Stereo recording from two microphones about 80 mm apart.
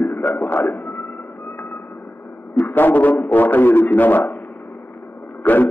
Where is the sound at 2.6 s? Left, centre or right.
Left.